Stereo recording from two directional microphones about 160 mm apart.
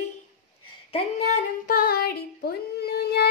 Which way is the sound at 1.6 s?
65° left (ahead or behind).